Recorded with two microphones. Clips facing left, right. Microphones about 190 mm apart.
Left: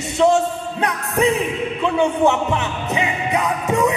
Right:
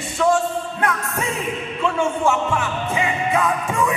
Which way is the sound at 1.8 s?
20° left (ahead or behind).